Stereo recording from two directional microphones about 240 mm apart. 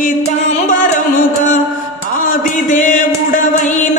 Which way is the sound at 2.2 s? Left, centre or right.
Left.